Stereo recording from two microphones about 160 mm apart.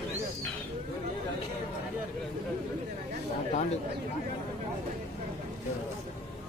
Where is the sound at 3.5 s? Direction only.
45° left (ahead or behind).